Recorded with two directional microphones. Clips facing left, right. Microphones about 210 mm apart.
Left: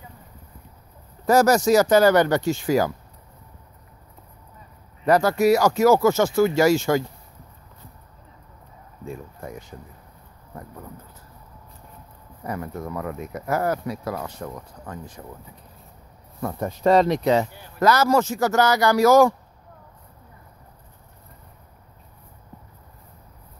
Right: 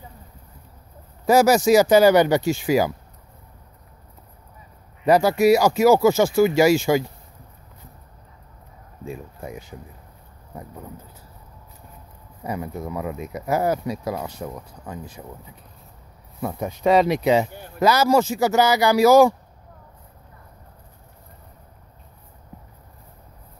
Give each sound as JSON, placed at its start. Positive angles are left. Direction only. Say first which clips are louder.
{"t": 1.2, "sound": "speech", "louder": "right 1 dB", "side_deg": -10}
{"t": 5.0, "sound": "speech", "louder": "right 2 dB", "side_deg": -10}
{"t": 9.0, "sound": "speech", "louder": "right 1 dB", "side_deg": -15}
{"t": 12.4, "sound": "speech", "louder": "right 1 dB", "side_deg": -15}
{"t": 16.3, "sound": "speech", "louder": "even", "side_deg": -5}